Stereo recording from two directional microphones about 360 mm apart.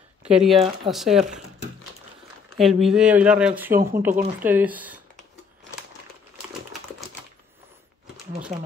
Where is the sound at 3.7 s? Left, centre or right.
Right.